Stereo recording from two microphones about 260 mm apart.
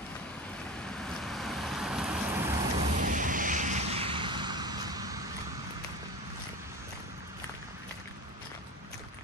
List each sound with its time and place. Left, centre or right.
1.0 s vehicle: centre
2.8 s vehicle: right; by 5.2 s centre